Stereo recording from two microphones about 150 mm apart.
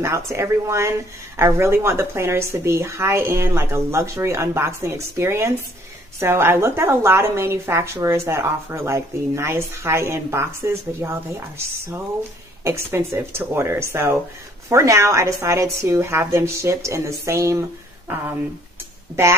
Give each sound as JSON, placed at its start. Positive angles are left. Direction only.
{"t": 0.0, "sound": "a woman's voice", "side_deg": -20}